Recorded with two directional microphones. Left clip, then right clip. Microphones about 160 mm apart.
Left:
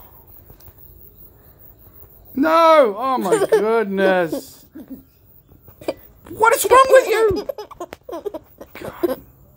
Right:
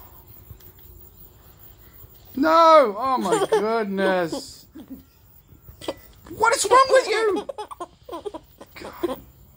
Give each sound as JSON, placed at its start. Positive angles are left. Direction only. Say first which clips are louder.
{"t": 2.3, "sound": "speech", "louder": "left 2 dB", "side_deg": 35}
{"t": 3.2, "sound": "speech", "louder": "left 6 dB", "side_deg": 15}
{"t": 3.6, "sound": "speech", "louder": "left 5 dB", "side_deg": 30}
{"t": 6.2, "sound": "a sound", "louder": "left 5 dB", "side_deg": 40}
{"t": 6.7, "sound": "speech", "louder": "left 5 dB", "side_deg": 35}
{"t": 7.2, "sound": "baby laughter", "louder": "left 4 dB", "side_deg": 15}
{"t": 8.7, "sound": "a sound", "louder": "left 5 dB", "side_deg": 35}